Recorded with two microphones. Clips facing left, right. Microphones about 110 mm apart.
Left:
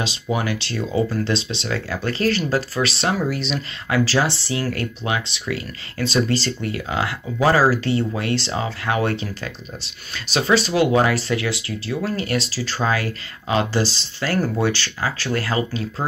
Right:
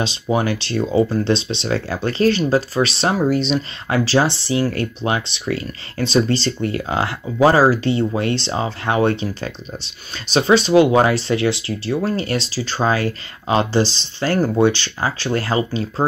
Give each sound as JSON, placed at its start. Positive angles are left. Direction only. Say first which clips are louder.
{"t": 0.0, "sound": "speech", "louder": "right 4 dB", "side_deg": -30}